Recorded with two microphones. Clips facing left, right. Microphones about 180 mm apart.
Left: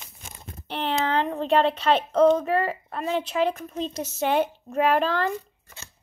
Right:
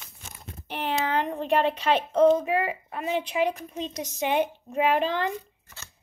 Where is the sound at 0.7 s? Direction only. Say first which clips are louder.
Left 2 dB; 10° right (ahead or behind).